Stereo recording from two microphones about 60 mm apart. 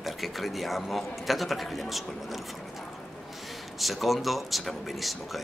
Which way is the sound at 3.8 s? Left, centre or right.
Centre.